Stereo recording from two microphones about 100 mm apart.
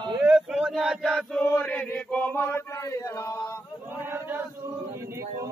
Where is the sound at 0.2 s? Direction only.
5° right (ahead or behind).